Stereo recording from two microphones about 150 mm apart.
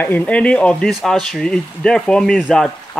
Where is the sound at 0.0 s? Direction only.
10° left (ahead or behind).